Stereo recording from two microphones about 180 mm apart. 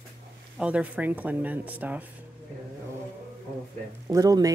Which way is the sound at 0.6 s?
5° right (ahead or behind).